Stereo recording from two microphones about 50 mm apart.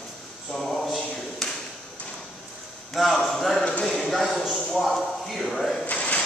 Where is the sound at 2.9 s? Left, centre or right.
Centre.